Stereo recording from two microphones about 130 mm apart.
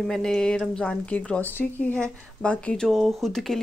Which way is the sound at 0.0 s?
Centre (ahead or behind).